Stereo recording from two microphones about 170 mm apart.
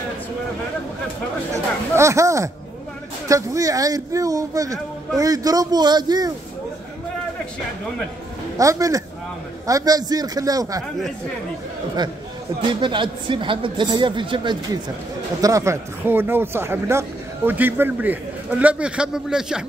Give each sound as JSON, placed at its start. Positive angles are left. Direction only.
{"t": 1.5, "sound": "speech", "side_deg": -15}
{"t": 8.5, "sound": "speech", "side_deg": -20}
{"t": 12.8, "sound": "speech", "side_deg": -30}